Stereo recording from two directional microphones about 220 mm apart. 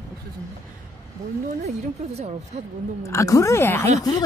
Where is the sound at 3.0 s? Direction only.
15° left (ahead or behind).